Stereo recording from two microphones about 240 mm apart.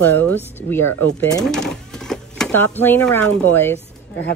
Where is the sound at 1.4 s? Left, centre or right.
Centre.